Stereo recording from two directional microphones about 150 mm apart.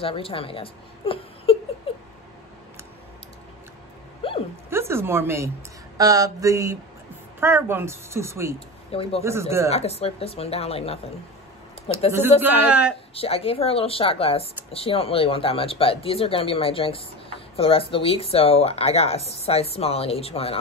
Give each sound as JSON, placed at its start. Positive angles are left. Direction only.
{"t": 0.0, "sound": "a woman's voice", "side_deg": 35}
{"t": 1.9, "sound": "a sound", "side_deg": 40}
{"t": 4.2, "sound": "a sound", "side_deg": 35}
{"t": 4.6, "sound": "a sound", "side_deg": -15}
{"t": 7.3, "sound": "a woman's voice", "side_deg": -15}
{"t": 8.5, "sound": "speech", "side_deg": 40}
{"t": 9.2, "sound": "a woman's voice", "side_deg": -15}
{"t": 9.7, "sound": "speech", "side_deg": 45}
{"t": 12.6, "sound": "a woman's voice", "side_deg": -10}
{"t": 13.1, "sound": "speech", "side_deg": 40}